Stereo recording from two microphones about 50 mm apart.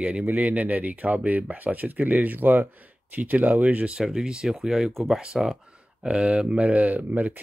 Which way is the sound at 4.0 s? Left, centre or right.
Centre.